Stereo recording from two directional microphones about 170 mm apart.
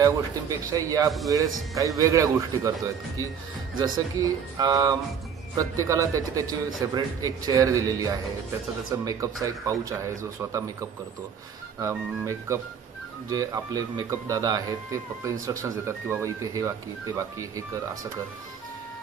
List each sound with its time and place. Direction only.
0.0 s speech: 20° right (ahead or behind)
3.8 s speech: 20° right (ahead or behind)